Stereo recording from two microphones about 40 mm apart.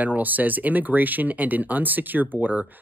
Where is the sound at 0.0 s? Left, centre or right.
Right.